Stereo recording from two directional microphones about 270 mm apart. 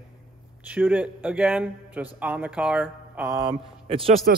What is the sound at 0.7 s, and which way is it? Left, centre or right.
A man's voice, centre.